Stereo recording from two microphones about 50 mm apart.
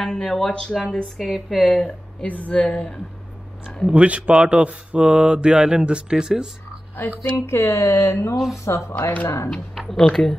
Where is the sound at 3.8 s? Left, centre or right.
Right.